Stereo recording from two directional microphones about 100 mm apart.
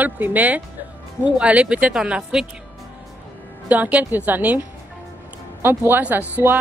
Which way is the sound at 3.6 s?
15° right (ahead or behind).